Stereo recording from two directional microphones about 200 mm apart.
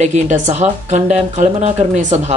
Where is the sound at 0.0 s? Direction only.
35° right (ahead or behind).